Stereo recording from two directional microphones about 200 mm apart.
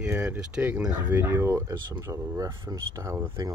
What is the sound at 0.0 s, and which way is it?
Speech, 5° right (ahead or behind).